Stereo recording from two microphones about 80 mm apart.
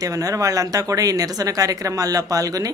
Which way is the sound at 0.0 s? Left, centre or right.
Right.